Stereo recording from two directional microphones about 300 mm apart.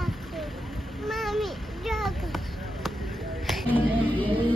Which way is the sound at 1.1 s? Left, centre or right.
Centre.